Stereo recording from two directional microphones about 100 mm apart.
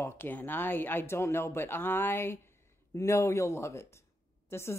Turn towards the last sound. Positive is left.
turn(degrees=25)  # may be behind; listen again after turning